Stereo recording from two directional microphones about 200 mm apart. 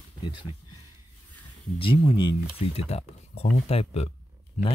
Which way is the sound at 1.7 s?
25° left (ahead or behind).